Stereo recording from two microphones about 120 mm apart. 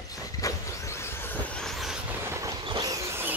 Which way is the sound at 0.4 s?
30° left (ahead or behind).